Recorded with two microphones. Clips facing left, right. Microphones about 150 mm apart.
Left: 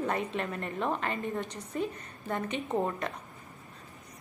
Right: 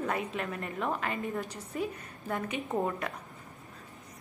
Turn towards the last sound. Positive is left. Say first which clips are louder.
# left 1 dB
turn(degrees=-5)  # may be behind; listen again after turning